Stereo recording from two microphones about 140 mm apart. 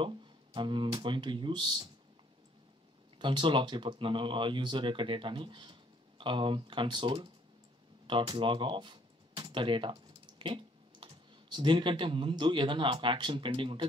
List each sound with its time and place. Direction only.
0.0 s speech: 35° right (ahead or behind)
3.2 s speech: 35° right (ahead or behind)